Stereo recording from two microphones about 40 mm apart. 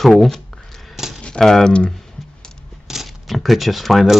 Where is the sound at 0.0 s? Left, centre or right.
Centre.